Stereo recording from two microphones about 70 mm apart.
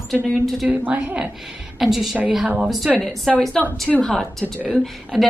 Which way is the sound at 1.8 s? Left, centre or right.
Centre.